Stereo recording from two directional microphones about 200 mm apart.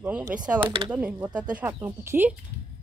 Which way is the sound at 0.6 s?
25° right (ahead or behind).